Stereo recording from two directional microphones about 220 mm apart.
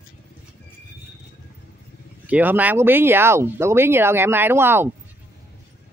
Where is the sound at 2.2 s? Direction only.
5° right (ahead or behind).